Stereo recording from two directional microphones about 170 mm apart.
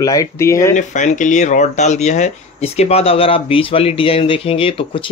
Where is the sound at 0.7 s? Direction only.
45° left (ahead or behind).